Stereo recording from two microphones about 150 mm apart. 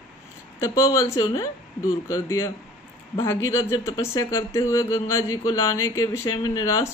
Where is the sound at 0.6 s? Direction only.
20° left (ahead or behind).